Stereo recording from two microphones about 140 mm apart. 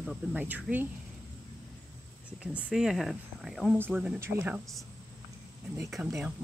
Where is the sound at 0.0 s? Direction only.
5° right (ahead or behind).